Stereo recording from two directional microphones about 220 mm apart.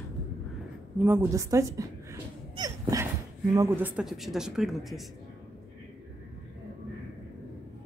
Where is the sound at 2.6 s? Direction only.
15° right (ahead or behind).